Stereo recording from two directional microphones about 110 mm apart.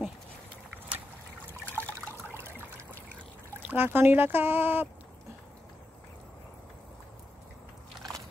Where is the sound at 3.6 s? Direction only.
20° right (ahead or behind).